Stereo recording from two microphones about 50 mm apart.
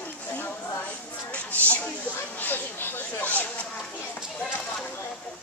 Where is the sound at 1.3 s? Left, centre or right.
Left.